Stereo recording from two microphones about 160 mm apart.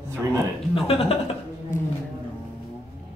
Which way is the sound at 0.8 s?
35° left (ahead or behind).